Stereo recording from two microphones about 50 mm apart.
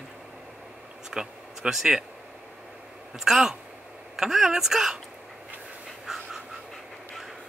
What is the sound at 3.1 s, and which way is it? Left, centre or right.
A woman's voice, centre.